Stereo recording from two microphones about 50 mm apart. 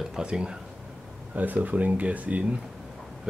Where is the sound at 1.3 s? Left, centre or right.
Right.